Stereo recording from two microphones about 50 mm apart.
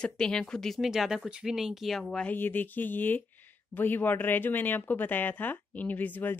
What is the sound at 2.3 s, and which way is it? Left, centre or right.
Speech, left.